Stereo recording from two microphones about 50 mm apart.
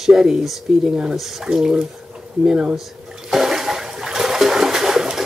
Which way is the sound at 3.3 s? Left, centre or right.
Centre.